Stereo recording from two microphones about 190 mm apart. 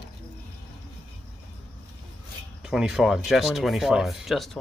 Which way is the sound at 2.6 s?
5° right (ahead or behind).